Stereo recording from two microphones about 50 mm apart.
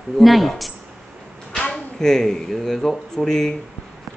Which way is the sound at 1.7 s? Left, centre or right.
Centre.